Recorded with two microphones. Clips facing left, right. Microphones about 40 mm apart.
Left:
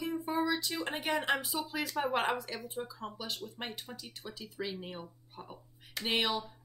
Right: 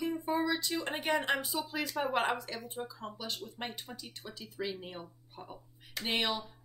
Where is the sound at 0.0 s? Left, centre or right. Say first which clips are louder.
Right 1 dB; centre.